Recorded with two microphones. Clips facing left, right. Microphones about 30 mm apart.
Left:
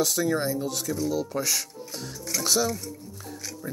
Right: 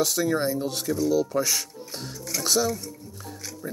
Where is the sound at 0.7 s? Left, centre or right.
Right.